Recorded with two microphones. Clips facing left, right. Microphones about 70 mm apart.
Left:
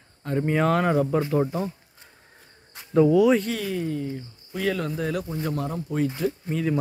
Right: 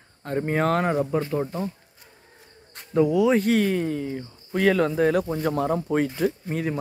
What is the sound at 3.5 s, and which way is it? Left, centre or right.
Speech, right.